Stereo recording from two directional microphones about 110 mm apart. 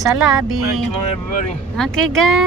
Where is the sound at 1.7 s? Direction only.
5° left (ahead or behind).